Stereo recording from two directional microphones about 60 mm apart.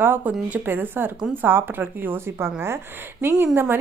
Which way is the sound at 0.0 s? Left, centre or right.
Right.